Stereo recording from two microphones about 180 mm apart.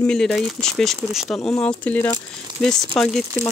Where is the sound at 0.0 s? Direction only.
5° left (ahead or behind).